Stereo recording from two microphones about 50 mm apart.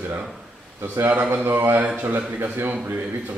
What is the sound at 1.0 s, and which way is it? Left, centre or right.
A man's voice, right.